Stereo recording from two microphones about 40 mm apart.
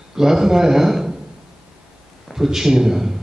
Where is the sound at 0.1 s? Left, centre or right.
Centre.